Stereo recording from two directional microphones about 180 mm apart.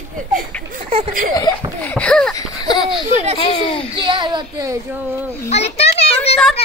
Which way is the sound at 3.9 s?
25° right (ahead or behind).